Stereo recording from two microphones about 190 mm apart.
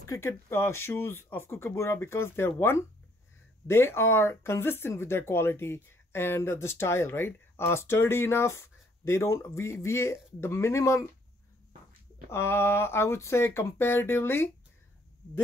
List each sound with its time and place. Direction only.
0.0 s speech: 15° left (ahead or behind)
12.3 s speech: 15° left (ahead or behind)